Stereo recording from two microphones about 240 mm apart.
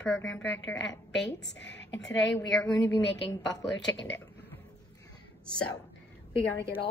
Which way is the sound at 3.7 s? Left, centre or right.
Left.